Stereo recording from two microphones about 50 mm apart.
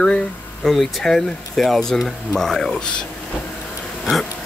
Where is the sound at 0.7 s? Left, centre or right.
Centre.